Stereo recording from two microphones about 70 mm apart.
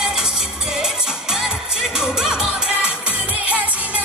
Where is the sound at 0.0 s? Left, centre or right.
Centre.